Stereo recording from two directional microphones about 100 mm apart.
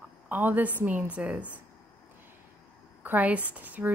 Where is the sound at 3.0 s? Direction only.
15° right (ahead or behind).